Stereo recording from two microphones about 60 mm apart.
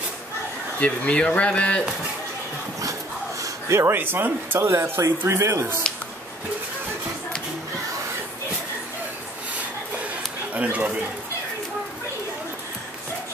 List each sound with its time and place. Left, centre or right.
0.7 s speech: left
3.4 s a sound: right
3.9 s speech: right
4.6 s a man's voice: right
10.5 s speech: right